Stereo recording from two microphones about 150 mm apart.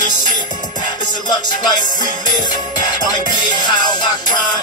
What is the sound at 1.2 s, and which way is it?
Music, 30° left (ahead or behind).